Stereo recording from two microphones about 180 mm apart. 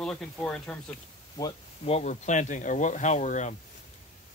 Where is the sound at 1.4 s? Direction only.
30° left (ahead or behind).